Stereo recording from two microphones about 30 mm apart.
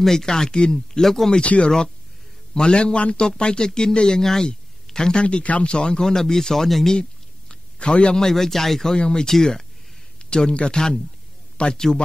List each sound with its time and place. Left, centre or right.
0.0 s speech: centre
1.4 s a man's voice: left
2.5 s a man's voice: left
3.2 s speech: left
4.2 s speech: centre
4.9 s a man's voice: left
5.2 s speech: left
5.7 s speech: left; by 6.7 s centre
7.0 s a sound: left
8.2 s speech: centre
8.9 s speech: left
9.3 s speech: centre
10.3 s speech: left
11.5 s a sound: left